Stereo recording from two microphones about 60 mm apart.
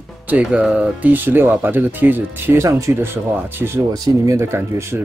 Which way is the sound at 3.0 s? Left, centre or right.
Right.